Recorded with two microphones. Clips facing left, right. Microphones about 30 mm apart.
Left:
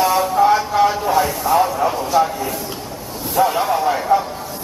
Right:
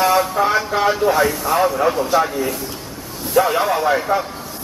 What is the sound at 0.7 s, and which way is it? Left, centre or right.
Speech, centre.